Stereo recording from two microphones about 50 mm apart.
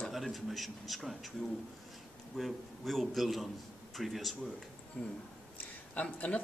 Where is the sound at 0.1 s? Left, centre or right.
Centre.